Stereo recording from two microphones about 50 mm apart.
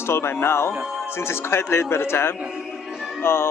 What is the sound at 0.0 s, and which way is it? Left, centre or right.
Speech, left.